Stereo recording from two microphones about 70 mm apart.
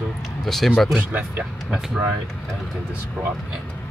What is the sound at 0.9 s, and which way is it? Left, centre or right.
Speech, centre.